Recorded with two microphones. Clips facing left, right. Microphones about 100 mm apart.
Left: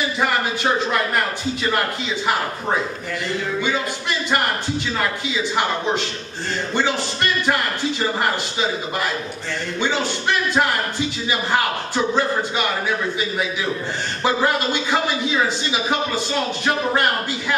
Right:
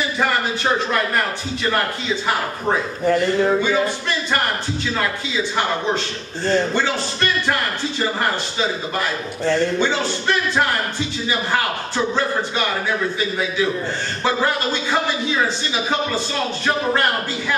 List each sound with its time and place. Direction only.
3.1 s speech: 45° right (ahead or behind)
6.7 s speech: 15° left (ahead or behind)
14.2 s speech: 15° left (ahead or behind)